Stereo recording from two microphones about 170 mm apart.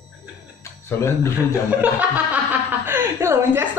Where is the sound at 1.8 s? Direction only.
10° right (ahead or behind).